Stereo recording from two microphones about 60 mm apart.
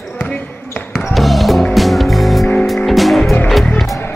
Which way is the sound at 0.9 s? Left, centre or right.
Centre.